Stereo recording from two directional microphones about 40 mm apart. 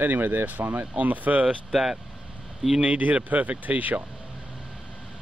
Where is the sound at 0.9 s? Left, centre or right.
Right.